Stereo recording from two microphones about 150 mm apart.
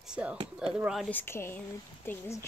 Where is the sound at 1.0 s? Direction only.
15° left (ahead or behind).